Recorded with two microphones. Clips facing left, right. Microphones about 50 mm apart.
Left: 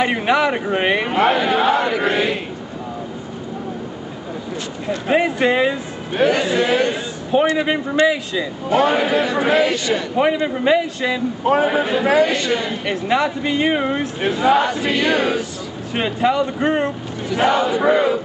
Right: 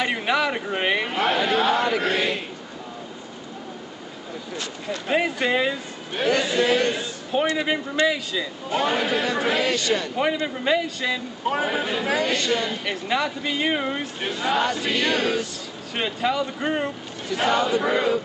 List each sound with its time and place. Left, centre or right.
0.0 s speech: centre
4.8 s speech: centre
6.1 s speech: centre
8.6 s speech: left
11.4 s a man's voice: left
15.9 s speech: centre
17.3 s speech: centre